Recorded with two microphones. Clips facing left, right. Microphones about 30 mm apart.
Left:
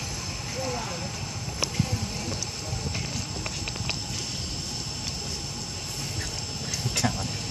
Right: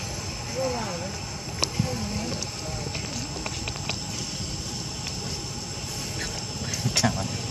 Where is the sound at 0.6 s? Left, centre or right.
Centre.